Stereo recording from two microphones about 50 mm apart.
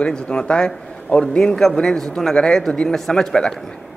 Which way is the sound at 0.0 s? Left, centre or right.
Centre.